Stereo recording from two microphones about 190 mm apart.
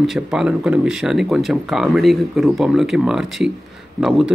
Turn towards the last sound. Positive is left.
turn(degrees=0)  # may be behind; listen again after turning